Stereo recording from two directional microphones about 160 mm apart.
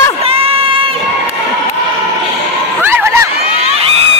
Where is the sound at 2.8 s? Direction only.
15° right (ahead or behind).